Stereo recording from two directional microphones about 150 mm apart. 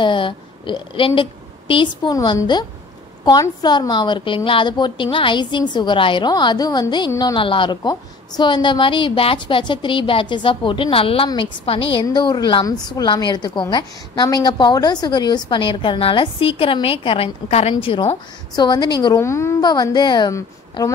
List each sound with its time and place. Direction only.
0.0 s a woman's voice: 35° left (ahead or behind)
7.3 s a woman's voice: 35° left (ahead or behind)